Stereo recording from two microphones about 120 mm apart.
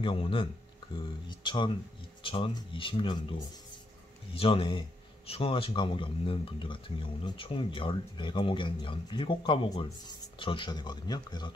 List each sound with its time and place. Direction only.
0.0 s speech: 45° left (ahead or behind)